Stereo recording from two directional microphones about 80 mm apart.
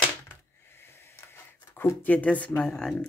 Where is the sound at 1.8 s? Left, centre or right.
Centre.